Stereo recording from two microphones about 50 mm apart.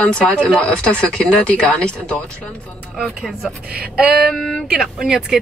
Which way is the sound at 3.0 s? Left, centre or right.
Centre.